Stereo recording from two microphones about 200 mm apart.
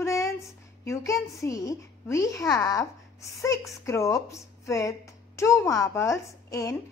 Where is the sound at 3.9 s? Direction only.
15° left (ahead or behind).